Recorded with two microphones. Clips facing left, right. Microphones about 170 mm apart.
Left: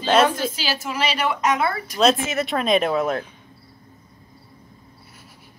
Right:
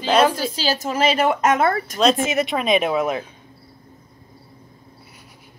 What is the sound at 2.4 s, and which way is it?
Speech, centre (ahead or behind).